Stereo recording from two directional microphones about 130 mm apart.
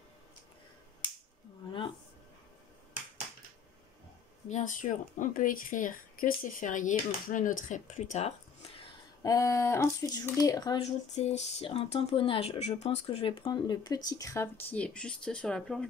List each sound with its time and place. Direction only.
4.5 s speech: 75° left (ahead or behind)
9.2 s speech: 25° left (ahead or behind)
10.8 s speech: 55° left (ahead or behind)
13.7 s speech: 30° left (ahead or behind)
14.7 s speech: 10° left (ahead or behind)